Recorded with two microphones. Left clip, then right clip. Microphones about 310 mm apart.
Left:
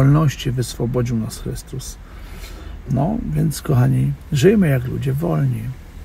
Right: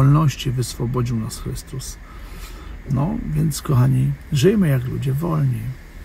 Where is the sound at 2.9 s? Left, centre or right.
Centre.